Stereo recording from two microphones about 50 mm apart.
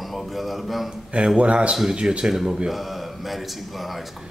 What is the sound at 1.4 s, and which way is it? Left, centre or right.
Speech, right.